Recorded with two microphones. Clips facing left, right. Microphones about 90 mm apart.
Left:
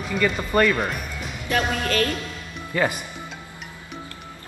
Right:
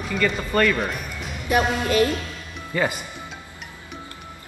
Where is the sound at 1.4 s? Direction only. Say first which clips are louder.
Right 3 dB; 15° right (ahead or behind).